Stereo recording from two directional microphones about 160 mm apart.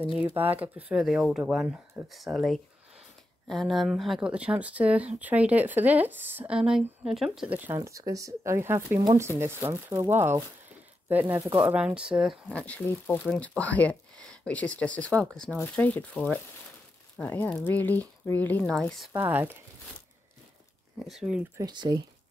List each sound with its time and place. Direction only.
0.2 s speech: 10° right (ahead or behind); by 19.0 s 5° left (ahead or behind)
19.1 s speech: 15° right (ahead or behind)
21.0 s speech: 5° right (ahead or behind)
21.5 s speech: 25° right (ahead or behind)